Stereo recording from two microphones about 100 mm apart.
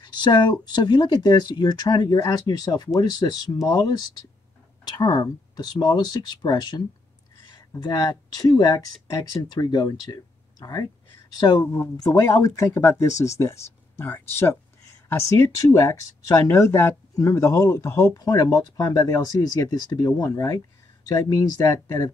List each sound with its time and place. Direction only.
0.0 s speech: 50° left (ahead or behind)
7.8 s speech: 40° left (ahead or behind)
11.6 s speech: 30° left (ahead or behind)
18.2 s speech: 40° left (ahead or behind)